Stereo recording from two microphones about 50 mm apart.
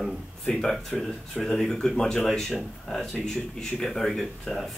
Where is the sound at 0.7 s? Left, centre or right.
Centre.